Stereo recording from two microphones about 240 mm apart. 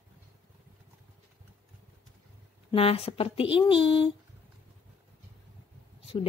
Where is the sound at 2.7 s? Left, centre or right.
Left.